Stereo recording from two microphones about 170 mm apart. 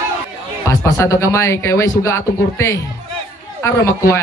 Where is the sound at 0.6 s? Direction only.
15° left (ahead or behind).